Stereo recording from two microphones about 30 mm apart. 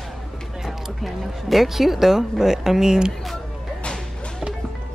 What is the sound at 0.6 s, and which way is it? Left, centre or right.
Speech, centre.